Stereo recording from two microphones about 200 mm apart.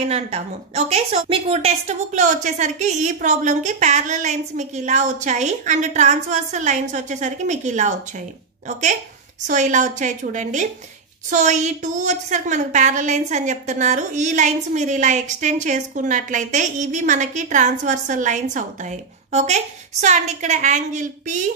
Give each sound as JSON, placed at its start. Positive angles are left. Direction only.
{"t": 0.1, "sound": "a woman's voice", "side_deg": -35}
{"t": 9.5, "sound": "a woman's voice", "side_deg": -40}